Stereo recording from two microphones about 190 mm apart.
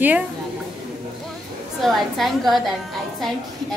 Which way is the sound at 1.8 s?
Centre (ahead or behind).